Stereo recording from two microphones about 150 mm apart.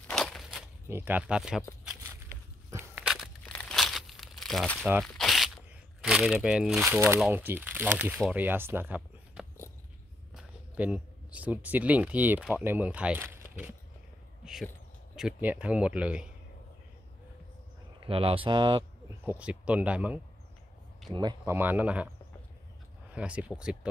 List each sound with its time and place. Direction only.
0.0 s a sound: 5° left (ahead or behind)
0.8 s speech: 15° right (ahead or behind)
2.7 s crushing: 10° right (ahead or behind)
3.4 s crumpling: 5° left (ahead or behind)
5.0 s a sound: centre (ahead or behind)
5.9 s speech: 5° right (ahead or behind)
14.4 s a sound: 5° right (ahead or behind)
15.1 s speech: 10° right (ahead or behind)
18.0 s speech: 40° right (ahead or behind)
19.2 s speech: 10° right (ahead or behind)
21.1 s speech: 30° right (ahead or behind)
21.5 s speech: 10° right (ahead or behind)
23.1 s speech: 10° right (ahead or behind)